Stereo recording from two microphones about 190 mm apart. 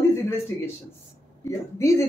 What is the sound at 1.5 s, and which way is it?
Speech, 15° left (ahead or behind).